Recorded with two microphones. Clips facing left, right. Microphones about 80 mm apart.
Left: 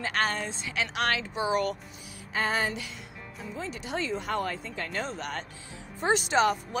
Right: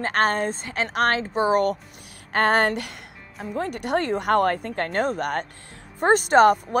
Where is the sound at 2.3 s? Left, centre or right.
Right.